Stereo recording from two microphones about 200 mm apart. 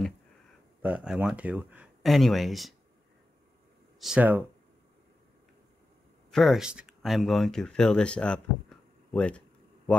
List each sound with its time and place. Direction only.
0.8 s speech: 5° right (ahead or behind)
4.0 s speech: 5° right (ahead or behind)
6.3 s speech: centre (ahead or behind)